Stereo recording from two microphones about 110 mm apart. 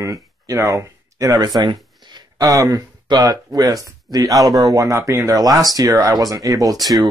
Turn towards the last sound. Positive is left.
turn(degrees=0)  # may be behind; listen again after turning